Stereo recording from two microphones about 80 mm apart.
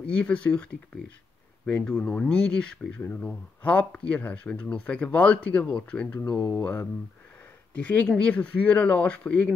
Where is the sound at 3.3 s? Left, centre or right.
Centre.